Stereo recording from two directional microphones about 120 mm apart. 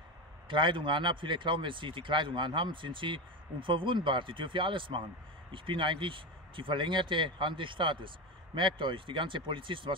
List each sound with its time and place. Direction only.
0.5 s speech: 45° right (ahead or behind)